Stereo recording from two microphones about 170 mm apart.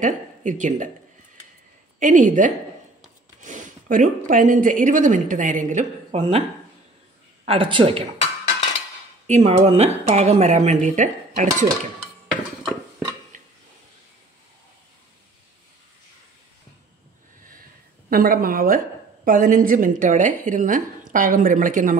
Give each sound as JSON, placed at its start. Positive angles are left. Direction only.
{"t": 0.0, "sound": "a woman's voice", "side_deg": -45}
{"t": 2.0, "sound": "speech", "side_deg": -50}
{"t": 6.1, "sound": "speech", "side_deg": -35}
{"t": 7.4, "sound": "speech", "side_deg": -30}
{"t": 9.3, "sound": "speech", "side_deg": -40}
{"t": 18.1, "sound": "a woman's voice", "side_deg": -60}